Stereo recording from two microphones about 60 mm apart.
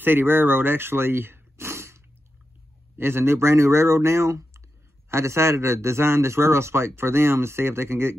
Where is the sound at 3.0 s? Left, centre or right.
Right.